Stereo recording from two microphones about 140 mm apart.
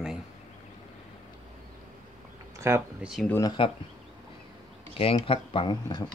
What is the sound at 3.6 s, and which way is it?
Speech, 40° left (ahead or behind).